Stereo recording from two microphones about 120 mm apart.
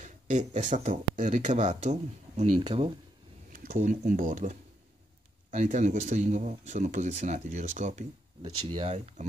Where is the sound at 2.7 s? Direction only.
50° right (ahead or behind).